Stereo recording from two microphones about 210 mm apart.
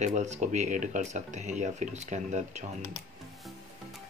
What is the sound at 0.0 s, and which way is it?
Speech, 35° right (ahead or behind).